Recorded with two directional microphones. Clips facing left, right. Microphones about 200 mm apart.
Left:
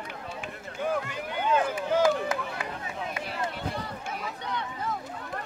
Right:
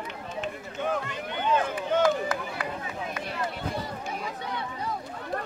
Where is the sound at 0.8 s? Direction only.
5° left (ahead or behind).